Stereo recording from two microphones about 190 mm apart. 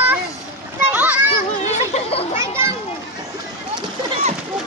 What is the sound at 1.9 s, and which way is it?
Children playing, 35° left (ahead or behind).